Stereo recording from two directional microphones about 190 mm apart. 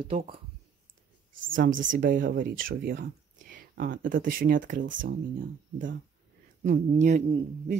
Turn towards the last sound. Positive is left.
turn(degrees=-40)  # may be behind; listen again after turning